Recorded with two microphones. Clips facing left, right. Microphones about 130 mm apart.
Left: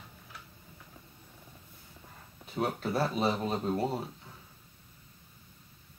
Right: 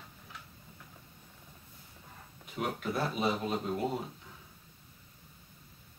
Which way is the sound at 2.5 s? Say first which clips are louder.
Left 3 dB; 35° left (ahead or behind).